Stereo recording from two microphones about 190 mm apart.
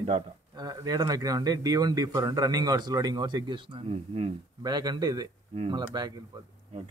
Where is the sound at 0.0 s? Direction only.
30° right (ahead or behind).